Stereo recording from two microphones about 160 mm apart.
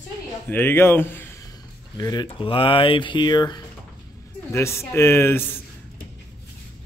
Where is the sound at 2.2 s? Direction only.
35° left (ahead or behind); by 5.5 s 15° left (ahead or behind).